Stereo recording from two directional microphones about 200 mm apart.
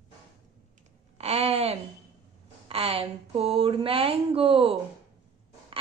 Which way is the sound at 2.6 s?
30° right (ahead or behind).